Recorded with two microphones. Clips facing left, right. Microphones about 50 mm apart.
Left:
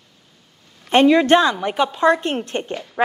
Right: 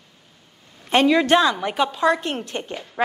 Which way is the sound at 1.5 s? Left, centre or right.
Centre.